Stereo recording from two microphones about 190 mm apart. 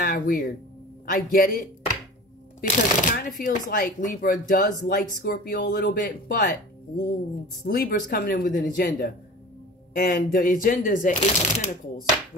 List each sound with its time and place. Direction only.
0.0 s speech: 50° left (ahead or behind)
7.6 s speech: 50° left (ahead or behind)